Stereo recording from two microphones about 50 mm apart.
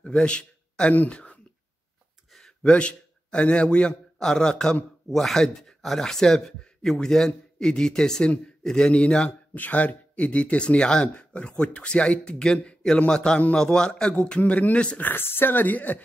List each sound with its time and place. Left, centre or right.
0.0 s a sound: left
0.9 s speech: left
2.6 s a man's voice: left
9.5 s speech: left
15.0 s speech: left